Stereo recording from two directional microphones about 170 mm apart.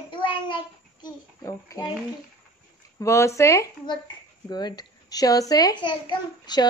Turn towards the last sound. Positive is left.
turn(degrees=25)  # may be behind; listen again after turning